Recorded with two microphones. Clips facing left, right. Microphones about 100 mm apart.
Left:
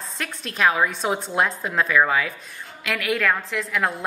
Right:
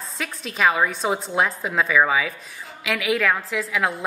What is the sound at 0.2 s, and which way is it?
A woman's voice, centre (ahead or behind).